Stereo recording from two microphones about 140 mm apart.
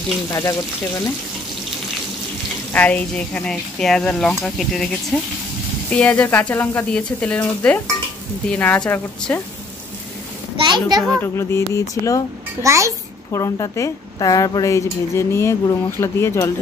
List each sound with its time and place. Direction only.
0.3 s speech: 25° left (ahead or behind)
2.7 s speech: 10° left (ahead or behind)
10.7 s a child's voice: 30° right (ahead or behind)
11.1 s speech: 15° left (ahead or behind)
12.6 s a child's voice: 20° right (ahead or behind)
13.3 s speech: 25° left (ahead or behind)